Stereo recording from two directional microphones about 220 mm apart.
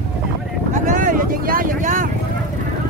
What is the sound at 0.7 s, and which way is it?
Vehicle, 35° right (ahead or behind).